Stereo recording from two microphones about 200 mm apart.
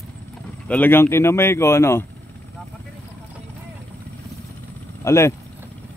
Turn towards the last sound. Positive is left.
turn(degrees=15)  # may be behind; listen again after turning